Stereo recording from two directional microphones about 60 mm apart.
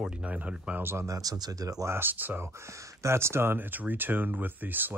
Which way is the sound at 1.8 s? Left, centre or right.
Right.